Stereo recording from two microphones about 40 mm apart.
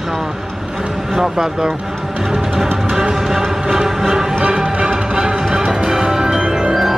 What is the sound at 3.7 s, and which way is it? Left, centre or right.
Music, centre.